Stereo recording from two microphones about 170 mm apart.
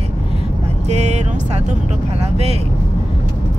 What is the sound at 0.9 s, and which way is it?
Vehicle, 40° right (ahead or behind).